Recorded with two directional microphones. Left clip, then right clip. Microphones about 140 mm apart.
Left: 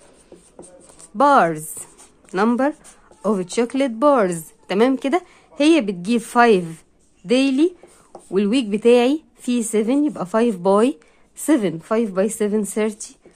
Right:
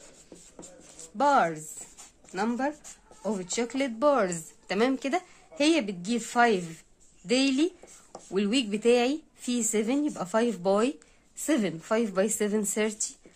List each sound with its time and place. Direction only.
1.1 s speech: 40° left (ahead or behind)
7.2 s speech: 20° left (ahead or behind)